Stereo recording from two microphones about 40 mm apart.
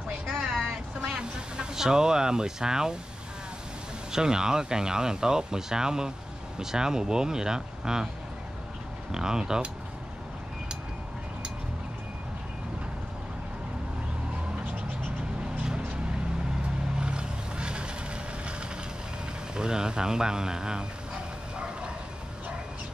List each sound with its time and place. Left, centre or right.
0.5 s a sound: centre
1.6 s speech: centre
4.1 s speech: centre
9.1 s speech: centre
17.0 s vehicle: right
19.5 s speech: centre